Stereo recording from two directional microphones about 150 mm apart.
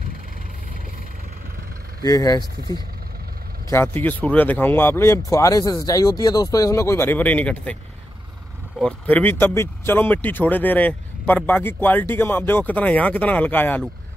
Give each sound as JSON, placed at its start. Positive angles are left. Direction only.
{"t": 2.0, "sound": "speech", "side_deg": 25}
{"t": 8.7, "sound": "speech", "side_deg": 10}